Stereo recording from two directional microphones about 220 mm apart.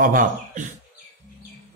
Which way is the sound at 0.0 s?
35° right (ahead or behind).